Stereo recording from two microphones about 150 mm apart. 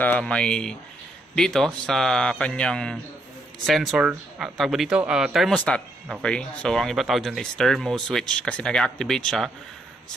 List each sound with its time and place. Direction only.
0.0 s speech: 10° left (ahead or behind)
5.5 s speech: 5° left (ahead or behind)